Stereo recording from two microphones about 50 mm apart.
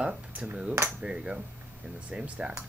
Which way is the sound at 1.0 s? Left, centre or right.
Centre.